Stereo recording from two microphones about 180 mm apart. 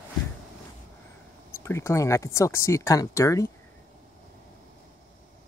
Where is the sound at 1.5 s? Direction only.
15° left (ahead or behind).